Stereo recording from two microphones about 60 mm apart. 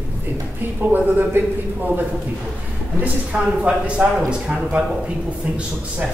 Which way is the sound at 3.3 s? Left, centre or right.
Centre.